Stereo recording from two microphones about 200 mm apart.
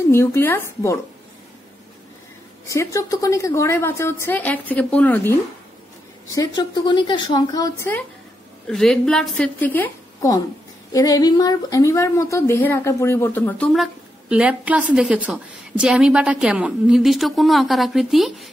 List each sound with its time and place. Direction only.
0.1 s a woman's voice: 15° left (ahead or behind)
2.6 s a woman's voice: 15° left (ahead or behind)
8.6 s a woman's voice: 5° left (ahead or behind)
14.3 s a woman's voice: 5° right (ahead or behind)